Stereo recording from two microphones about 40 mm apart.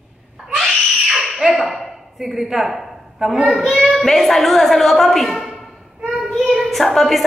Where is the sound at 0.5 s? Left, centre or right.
Centre.